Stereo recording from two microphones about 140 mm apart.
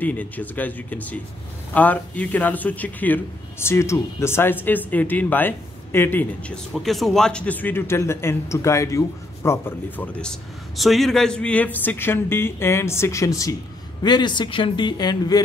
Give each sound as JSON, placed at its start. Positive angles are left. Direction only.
{"t": 0.0, "sound": "speech", "side_deg": 10}
{"t": 10.8, "sound": "speech", "side_deg": 0}